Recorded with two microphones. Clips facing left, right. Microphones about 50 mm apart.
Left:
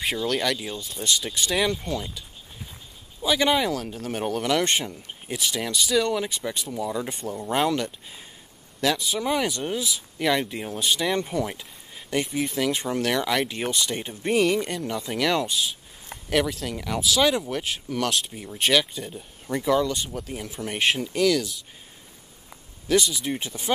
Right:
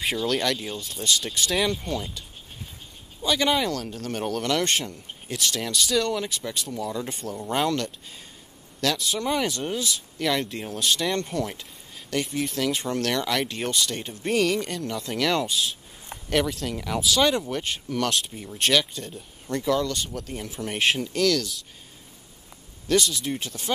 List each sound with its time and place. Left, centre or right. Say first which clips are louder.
0.3 s speech: even; centre
22.8 s speech: left 1 dB; centre